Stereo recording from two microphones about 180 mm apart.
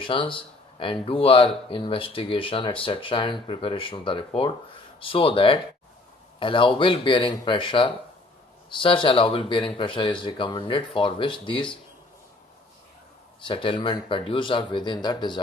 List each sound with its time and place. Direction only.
0.0 s speech: 30° left (ahead or behind)
13.4 s speech: 25° left (ahead or behind)